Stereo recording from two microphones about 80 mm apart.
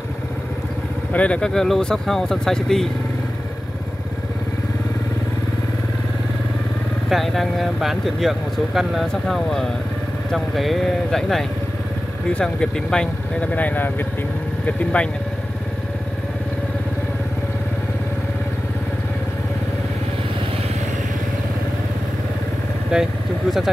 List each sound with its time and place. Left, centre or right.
1.1 s speech: centre
7.1 s speech: centre
22.9 s speech: centre